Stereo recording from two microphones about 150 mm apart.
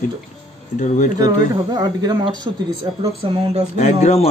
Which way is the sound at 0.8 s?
55° left (ahead or behind).